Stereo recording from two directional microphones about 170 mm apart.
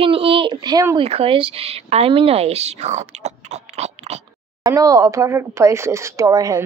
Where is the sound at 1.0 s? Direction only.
35° right (ahead or behind).